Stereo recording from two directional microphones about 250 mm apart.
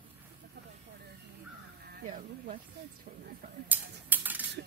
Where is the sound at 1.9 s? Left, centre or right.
Right.